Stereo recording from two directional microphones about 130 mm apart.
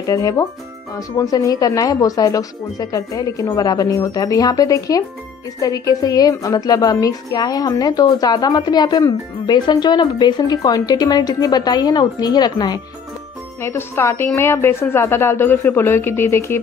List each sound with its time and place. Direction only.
0.0 s a woman's voice: 25° left (ahead or behind)
13.6 s speech: 20° left (ahead or behind)